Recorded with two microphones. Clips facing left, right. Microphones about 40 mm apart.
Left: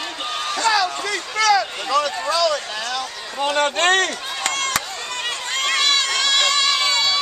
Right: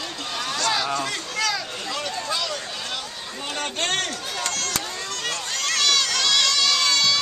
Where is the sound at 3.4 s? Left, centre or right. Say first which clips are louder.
Left 10 dB; left.